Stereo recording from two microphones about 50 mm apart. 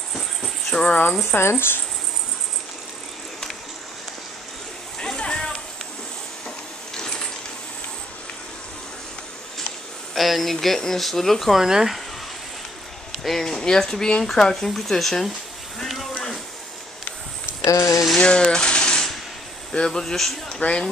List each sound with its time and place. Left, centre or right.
0.1 s cricket: centre
1.3 s speech: left
5.0 s a sound: centre
6.9 s water: centre
10.1 s speech: centre
11.6 s speech: centre
13.1 s speech: centre
15.8 s a sound: centre
17.6 s speech: left
18.2 s coin: centre
19.7 s speech: centre